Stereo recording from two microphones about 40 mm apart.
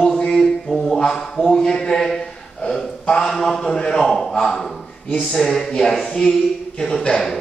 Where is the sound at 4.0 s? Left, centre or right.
Centre.